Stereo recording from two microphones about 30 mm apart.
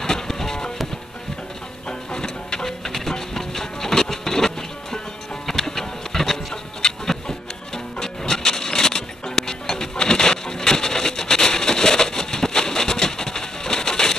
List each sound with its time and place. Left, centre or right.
0.3 s music: centre
1.9 s music: left
5.5 s a sound: centre